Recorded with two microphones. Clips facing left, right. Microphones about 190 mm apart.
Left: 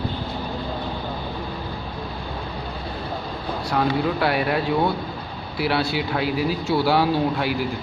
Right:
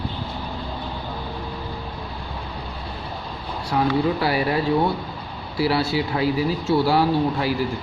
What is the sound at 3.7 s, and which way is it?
Speech, 5° right (ahead or behind).